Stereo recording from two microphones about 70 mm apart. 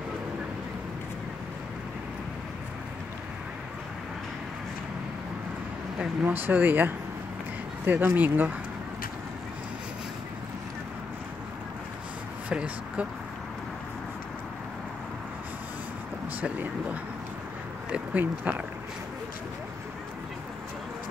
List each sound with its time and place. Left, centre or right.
6.2 s speech: right
12.4 s speech: centre
16.3 s speech: right